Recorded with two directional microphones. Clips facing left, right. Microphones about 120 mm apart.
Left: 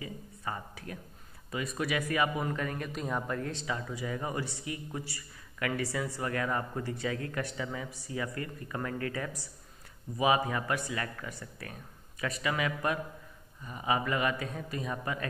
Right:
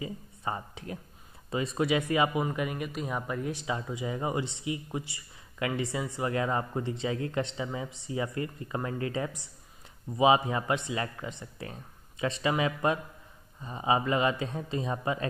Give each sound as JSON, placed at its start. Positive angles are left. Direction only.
{"t": 0.0, "sound": "a sound", "side_deg": -25}
{"t": 1.5, "sound": "a man's voice", "side_deg": -25}
{"t": 3.6, "sound": "a man's voice", "side_deg": -20}